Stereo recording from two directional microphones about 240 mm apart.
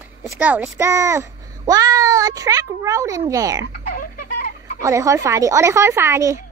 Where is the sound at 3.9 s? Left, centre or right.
Left.